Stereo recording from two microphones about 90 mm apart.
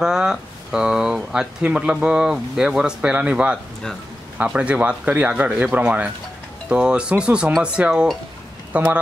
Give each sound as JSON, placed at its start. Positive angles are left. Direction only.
{"t": 0.0, "sound": "speech", "side_deg": -5}